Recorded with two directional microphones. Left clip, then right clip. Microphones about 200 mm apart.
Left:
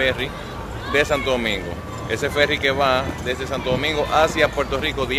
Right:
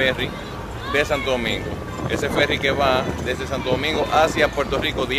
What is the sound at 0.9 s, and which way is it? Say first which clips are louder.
Speech: left 1 dB; 20° left (ahead or behind).